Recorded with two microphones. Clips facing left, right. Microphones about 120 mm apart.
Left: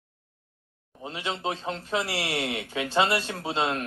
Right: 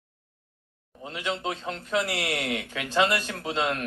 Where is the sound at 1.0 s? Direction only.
30° left (ahead or behind).